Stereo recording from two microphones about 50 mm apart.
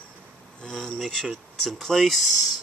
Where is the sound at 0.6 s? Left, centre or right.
Centre.